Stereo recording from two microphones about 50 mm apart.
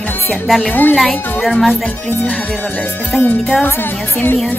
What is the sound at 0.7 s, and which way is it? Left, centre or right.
Speech, left.